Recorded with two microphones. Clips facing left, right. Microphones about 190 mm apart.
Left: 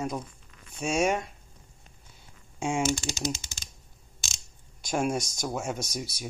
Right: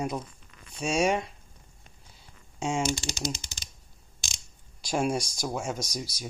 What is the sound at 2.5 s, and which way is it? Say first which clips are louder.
Speech: left 1 dB; 5° left (ahead or behind).